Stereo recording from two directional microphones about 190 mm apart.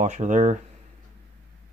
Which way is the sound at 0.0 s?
40° right (ahead or behind).